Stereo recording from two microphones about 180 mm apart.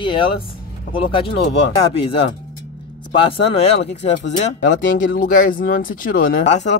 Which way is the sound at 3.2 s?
30° left (ahead or behind).